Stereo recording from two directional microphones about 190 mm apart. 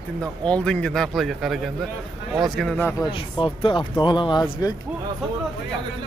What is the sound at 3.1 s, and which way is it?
Speech, 25° left (ahead or behind).